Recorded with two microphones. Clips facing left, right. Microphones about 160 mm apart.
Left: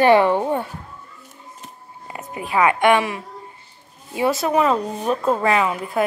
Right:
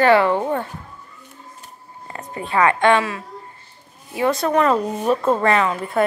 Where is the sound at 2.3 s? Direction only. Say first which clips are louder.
Even; 10° left (ahead or behind).